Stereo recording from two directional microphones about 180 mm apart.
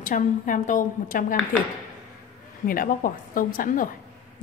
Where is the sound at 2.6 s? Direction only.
50° left (ahead or behind).